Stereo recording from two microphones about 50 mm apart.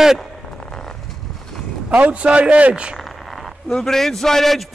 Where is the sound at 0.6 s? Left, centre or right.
Centre.